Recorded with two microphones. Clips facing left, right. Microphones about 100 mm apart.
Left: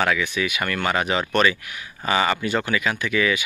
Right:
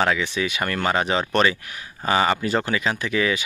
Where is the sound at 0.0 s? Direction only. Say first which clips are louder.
Even; 30° right (ahead or behind).